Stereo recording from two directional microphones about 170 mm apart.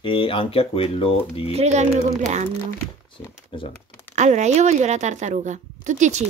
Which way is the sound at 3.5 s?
30° left (ahead or behind).